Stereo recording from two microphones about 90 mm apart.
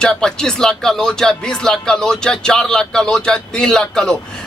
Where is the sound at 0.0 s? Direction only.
10° left (ahead or behind).